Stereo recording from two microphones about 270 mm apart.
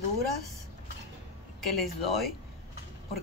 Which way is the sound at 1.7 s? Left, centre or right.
Centre.